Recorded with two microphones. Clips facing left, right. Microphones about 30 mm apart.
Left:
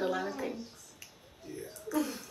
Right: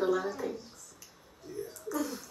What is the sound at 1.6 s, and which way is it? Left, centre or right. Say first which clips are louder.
Speech: left 1 dB; left.